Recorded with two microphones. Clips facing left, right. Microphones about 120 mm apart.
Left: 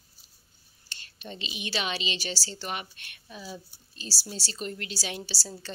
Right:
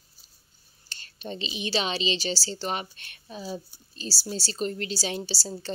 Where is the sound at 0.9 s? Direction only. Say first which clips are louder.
Right 5 dB; 35° right (ahead or behind).